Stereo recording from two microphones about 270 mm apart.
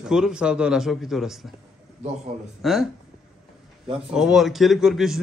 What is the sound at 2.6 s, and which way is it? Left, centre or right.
Speech, centre.